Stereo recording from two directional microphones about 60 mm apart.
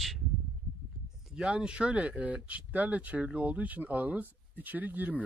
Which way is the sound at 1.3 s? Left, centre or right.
Centre.